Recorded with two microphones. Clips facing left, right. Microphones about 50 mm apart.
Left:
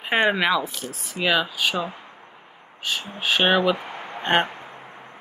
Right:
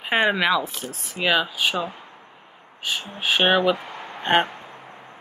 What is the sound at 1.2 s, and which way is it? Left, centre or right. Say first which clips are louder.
Speech: right 1 dB; centre.